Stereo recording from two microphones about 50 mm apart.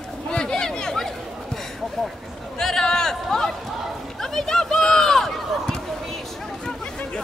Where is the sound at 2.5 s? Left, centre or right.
Centre.